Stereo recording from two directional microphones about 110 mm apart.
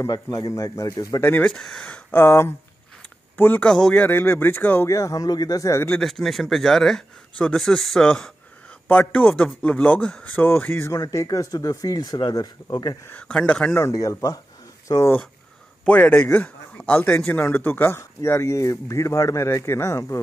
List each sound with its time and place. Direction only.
0.0 s speech: 30° left (ahead or behind)
1.3 s a man's voice: 10° left (ahead or behind)
3.6 s speech: 5° left (ahead or behind)
4.0 s speech: 20° left (ahead or behind)
5.9 s a man's voice: 5° left (ahead or behind)
10.9 s speech: 30° left (ahead or behind)
13.1 s a man's voice: 10° left (ahead or behind)
13.7 s speech: 30° left (ahead or behind)
15.8 s speech: 10° left (ahead or behind)